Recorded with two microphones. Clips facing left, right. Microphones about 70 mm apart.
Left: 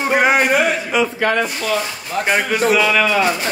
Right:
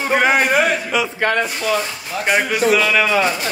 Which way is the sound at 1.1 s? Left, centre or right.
Right.